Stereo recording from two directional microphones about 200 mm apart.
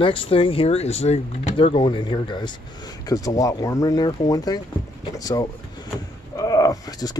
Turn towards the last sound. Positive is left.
turn(degrees=15)  # may be behind; listen again after turning